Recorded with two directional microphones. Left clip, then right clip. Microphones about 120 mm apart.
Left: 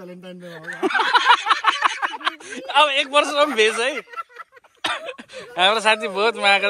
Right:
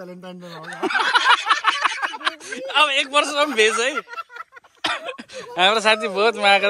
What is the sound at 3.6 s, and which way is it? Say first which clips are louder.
Speech: right 1 dB; 20° right (ahead or behind).